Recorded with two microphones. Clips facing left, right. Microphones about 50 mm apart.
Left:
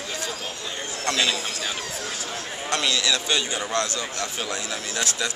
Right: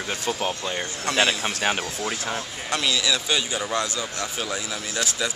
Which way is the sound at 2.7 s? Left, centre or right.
Centre.